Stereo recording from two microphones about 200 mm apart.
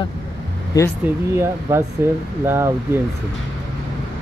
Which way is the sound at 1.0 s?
10° right (ahead or behind).